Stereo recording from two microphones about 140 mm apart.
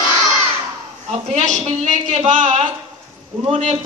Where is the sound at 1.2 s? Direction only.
60° right (ahead or behind).